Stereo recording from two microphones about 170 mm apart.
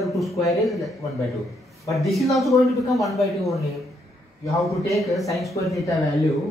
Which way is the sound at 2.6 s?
20° left (ahead or behind).